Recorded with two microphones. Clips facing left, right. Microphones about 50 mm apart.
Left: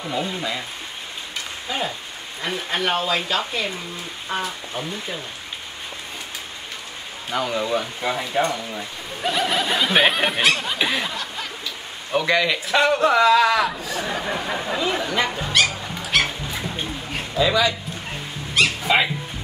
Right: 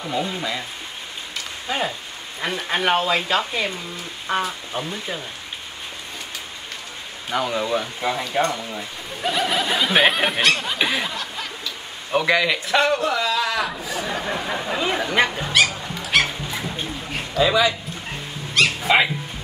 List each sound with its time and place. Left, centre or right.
0.0 s speech: centre
2.4 s speech: centre
7.2 s speech: centre
13.0 s a sound: left
13.7 s speech: centre
14.8 s speech: centre
15.3 s dog: centre
17.4 s speech: centre
18.9 s speech: centre